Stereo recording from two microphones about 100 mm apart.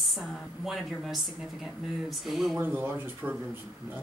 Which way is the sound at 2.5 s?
20° right (ahead or behind).